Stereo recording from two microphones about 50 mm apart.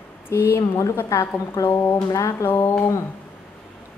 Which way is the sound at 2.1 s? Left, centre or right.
Left.